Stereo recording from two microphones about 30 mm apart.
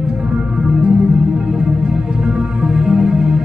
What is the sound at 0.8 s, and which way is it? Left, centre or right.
Music, right.